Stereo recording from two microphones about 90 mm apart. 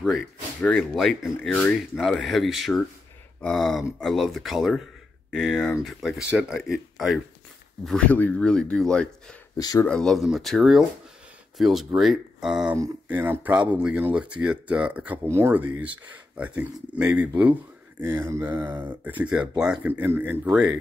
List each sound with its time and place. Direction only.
0.6 s speech: 15° left (ahead or behind)
0.9 s speech: centre (ahead or behind)
13.1 s speech: 20° right (ahead or behind)
15.2 s speech: 30° right (ahead or behind)
18.0 s speech: 25° right (ahead or behind); by 19.9 s 10° right (ahead or behind)
19.9 s speech: 20° right (ahead or behind)